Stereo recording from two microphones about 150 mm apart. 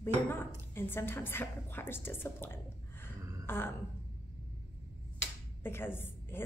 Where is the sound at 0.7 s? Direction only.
15° left (ahead or behind).